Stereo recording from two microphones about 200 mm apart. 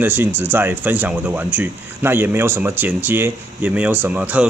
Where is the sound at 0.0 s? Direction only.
10° right (ahead or behind).